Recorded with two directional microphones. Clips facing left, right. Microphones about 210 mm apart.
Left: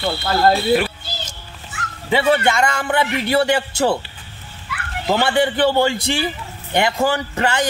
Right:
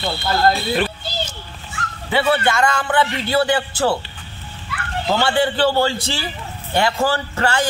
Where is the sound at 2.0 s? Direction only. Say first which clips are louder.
Left 2 dB; 20° left (ahead or behind).